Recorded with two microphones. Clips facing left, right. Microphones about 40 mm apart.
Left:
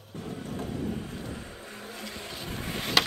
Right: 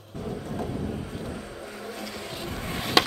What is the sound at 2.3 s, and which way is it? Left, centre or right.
Vehicle, right.